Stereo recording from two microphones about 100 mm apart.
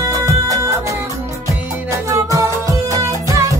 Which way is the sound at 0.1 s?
35° right (ahead or behind).